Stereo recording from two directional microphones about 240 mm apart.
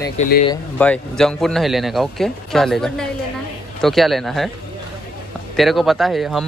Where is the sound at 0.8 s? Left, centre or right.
Centre.